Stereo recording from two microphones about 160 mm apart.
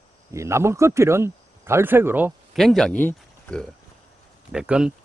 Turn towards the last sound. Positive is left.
turn(degrees=-5)  # may be behind; listen again after turning